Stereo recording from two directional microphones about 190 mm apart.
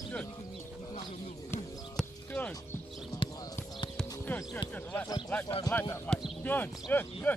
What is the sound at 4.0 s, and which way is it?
Music, 5° left (ahead or behind).